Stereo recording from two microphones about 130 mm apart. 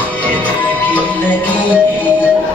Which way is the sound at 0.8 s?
10° left (ahead or behind).